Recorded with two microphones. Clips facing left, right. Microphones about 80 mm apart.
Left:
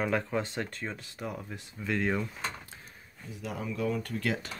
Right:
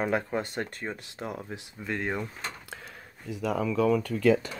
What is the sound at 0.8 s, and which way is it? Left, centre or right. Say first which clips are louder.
Speech: right 2 dB; right.